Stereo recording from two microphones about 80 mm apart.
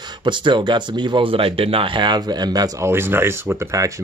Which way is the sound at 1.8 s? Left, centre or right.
Right.